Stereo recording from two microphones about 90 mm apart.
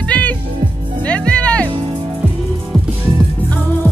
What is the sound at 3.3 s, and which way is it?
Music, 20° left (ahead or behind).